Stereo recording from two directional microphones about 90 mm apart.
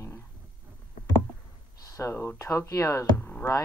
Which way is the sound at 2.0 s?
30° left (ahead or behind).